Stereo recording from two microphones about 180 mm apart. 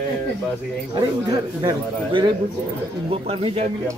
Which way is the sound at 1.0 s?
25° right (ahead or behind).